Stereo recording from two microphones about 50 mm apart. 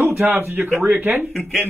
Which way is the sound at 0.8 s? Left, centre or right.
Right.